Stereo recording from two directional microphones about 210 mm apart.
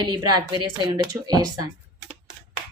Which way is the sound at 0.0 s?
20° right (ahead or behind).